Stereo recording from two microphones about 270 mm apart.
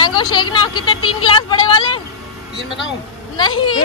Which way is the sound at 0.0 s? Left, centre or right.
Centre.